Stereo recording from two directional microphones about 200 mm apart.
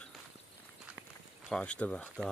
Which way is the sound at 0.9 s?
5° right (ahead or behind).